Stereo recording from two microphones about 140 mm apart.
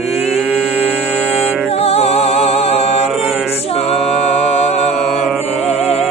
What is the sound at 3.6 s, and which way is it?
A capella, 45° left (ahead or behind).